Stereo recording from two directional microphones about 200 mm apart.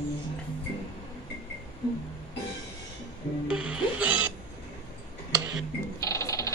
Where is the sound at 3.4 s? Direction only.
5° right (ahead or behind).